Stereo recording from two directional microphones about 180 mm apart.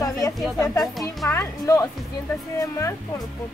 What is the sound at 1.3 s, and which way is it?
Speech, 15° left (ahead or behind).